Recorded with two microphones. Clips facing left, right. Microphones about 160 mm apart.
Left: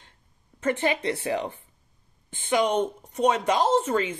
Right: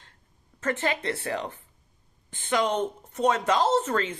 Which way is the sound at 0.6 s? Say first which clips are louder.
Left 3 dB; 20° left (ahead or behind).